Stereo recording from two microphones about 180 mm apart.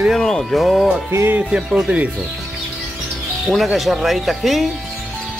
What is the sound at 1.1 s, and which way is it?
Speech, 15° right (ahead or behind).